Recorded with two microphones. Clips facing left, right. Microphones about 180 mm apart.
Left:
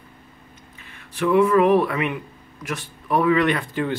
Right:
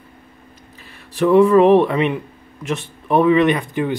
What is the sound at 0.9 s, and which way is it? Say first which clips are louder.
Speech: right 5 dB; 35° right (ahead or behind).